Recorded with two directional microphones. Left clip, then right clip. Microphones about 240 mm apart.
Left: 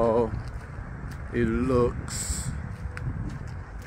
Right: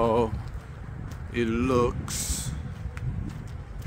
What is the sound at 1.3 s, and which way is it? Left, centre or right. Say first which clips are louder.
Speech: even; centre.